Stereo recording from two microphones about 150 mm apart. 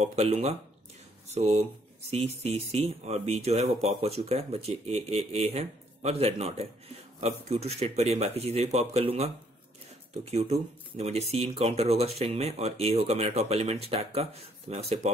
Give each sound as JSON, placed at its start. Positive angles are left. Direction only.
{"t": 0.0, "sound": "speech", "side_deg": -45}
{"t": 10.3, "sound": "speech", "side_deg": -45}